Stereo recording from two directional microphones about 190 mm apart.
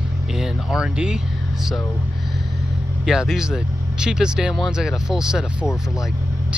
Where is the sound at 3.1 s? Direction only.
5° right (ahead or behind).